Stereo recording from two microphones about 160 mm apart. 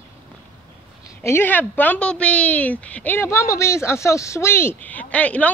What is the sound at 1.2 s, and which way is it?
A woman's voice, 15° left (ahead or behind).